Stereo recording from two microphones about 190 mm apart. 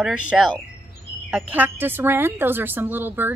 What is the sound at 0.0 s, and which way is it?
A woman's voice, 5° right (ahead or behind).